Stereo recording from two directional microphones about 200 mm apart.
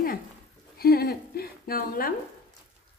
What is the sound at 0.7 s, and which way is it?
A woman's voice, 50° left (ahead or behind).